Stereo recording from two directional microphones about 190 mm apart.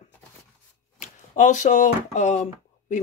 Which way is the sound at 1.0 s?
40° left (ahead or behind).